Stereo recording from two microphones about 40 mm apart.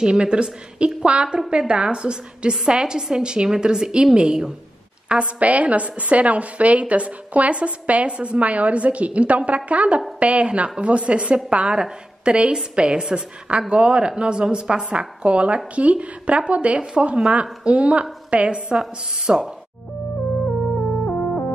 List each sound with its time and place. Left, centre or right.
0.0 s a woman's voice: right
18.8 s a woman's voice: centre